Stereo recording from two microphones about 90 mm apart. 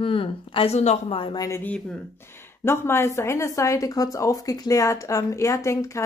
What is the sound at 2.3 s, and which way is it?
A woman's voice, 25° left (ahead or behind).